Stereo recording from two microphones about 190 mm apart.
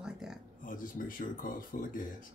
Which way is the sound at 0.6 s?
45° left (ahead or behind).